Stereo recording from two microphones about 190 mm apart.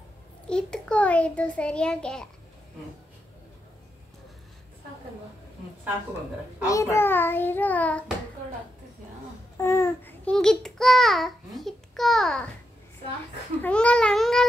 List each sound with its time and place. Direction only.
0.5 s a child's voice: 5° left (ahead or behind)
6.6 s child singing: 15° left (ahead or behind)
9.6 s a child's voice: 15° left (ahead or behind)
13.6 s a child's voice: 5° left (ahead or behind)